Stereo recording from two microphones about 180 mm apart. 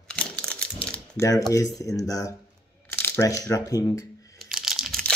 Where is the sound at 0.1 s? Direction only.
5° left (ahead or behind).